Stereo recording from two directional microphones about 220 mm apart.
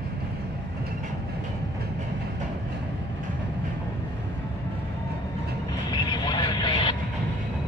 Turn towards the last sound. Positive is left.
turn(degrees=20)  # may be behind; listen again after turning